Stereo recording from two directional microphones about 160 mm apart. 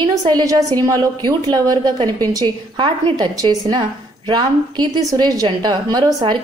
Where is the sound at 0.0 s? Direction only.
25° right (ahead or behind).